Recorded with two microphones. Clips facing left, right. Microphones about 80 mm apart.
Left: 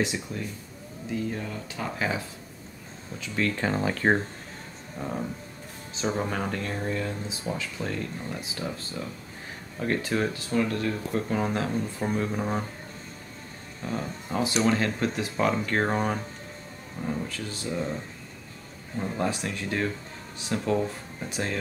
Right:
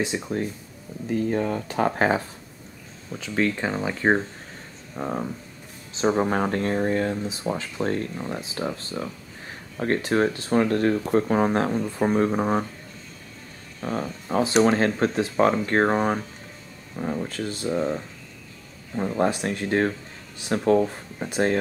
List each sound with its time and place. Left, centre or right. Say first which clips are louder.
0.1 s speech: right 4 dB; right
1.0 s speech: right 7 dB; right
3.1 s speech: right 4 dB; right
4.0 s speech: right 3 dB; centre
4.9 s speech: right 4 dB; right
10.5 s speech: right 6 dB; right
13.8 s speech: right 4 dB; right